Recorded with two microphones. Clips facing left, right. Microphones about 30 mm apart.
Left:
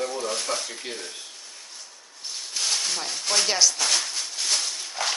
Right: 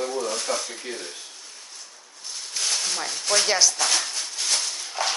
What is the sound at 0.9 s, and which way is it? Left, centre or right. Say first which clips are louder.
Speech: right 4 dB; left.